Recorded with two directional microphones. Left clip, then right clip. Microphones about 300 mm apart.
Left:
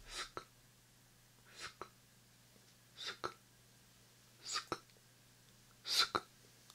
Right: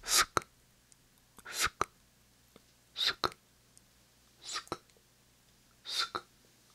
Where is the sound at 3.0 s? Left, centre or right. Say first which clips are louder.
Right 13 dB; right.